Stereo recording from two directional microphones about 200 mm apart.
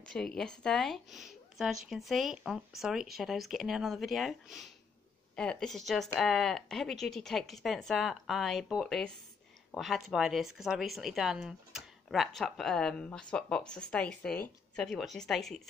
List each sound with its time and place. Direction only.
0.1 s speech: 5° left (ahead or behind)